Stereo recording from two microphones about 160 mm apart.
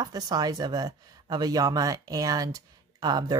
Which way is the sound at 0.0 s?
25° right (ahead or behind).